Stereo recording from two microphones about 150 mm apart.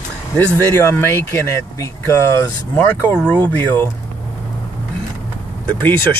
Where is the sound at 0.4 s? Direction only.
15° left (ahead or behind).